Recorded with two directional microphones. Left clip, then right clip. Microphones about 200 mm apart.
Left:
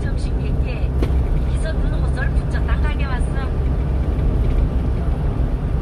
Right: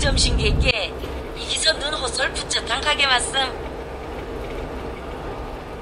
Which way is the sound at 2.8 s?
55° right (ahead or behind).